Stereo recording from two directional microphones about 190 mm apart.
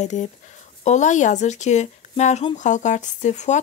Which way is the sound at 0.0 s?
40° left (ahead or behind).